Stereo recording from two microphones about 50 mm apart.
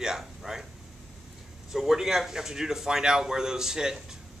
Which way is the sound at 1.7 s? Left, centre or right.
Centre.